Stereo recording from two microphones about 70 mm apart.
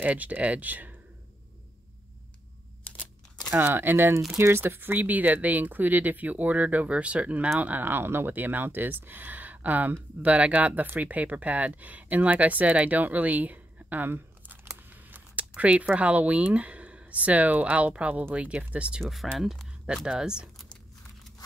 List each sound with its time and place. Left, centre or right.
0.0 s speech: right
3.5 s speech: right
15.5 s speech: centre
19.0 s speech: centre
20.1 s speech: centre